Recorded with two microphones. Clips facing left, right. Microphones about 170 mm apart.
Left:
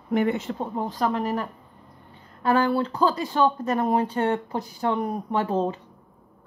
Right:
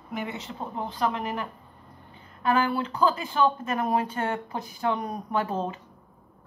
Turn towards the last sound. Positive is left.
turn(degrees=30)  # may be behind; listen again after turning